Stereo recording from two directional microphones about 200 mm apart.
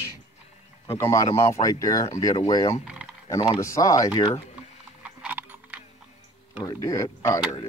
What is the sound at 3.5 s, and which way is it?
Speech, 15° left (ahead or behind).